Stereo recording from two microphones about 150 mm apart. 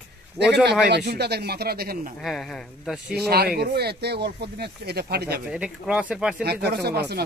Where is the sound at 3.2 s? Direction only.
90° right.